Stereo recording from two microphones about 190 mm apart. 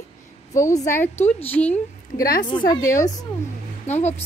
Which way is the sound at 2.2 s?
50° left (ahead or behind).